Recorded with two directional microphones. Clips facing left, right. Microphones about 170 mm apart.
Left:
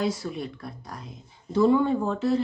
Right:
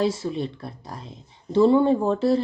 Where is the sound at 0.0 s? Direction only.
25° right (ahead or behind).